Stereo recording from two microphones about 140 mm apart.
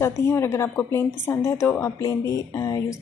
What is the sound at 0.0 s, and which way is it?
A woman's voice, 20° left (ahead or behind).